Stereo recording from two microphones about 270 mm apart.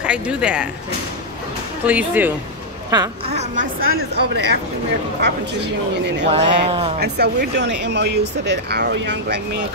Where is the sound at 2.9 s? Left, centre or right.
Centre.